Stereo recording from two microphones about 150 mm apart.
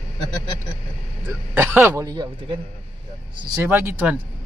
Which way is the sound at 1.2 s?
15° right (ahead or behind).